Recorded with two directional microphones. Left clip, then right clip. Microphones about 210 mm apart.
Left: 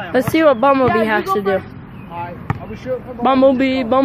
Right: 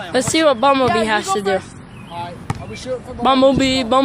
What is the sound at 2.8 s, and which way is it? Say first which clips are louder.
Speech: even; 5° right (ahead or behind).